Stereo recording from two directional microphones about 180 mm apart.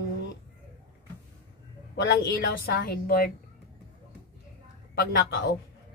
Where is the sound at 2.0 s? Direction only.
65° left (ahead or behind).